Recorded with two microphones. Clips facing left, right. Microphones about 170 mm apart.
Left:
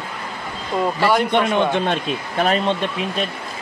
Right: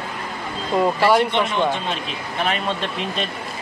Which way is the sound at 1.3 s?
55° left (ahead or behind).